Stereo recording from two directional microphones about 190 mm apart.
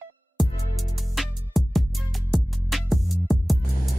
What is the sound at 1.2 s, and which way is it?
Music, centre (ahead or behind).